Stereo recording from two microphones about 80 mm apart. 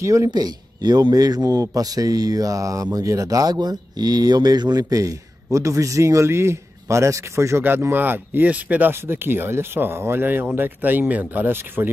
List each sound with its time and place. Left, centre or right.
0.0 s speech: right
0.3 s a man's voice: right
7.6 s speech: right